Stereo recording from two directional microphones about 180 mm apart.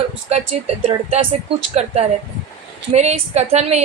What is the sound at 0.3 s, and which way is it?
Speech, 40° right (ahead or behind).